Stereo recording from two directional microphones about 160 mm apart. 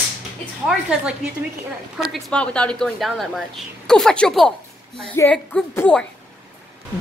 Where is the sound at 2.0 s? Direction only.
5° left (ahead or behind).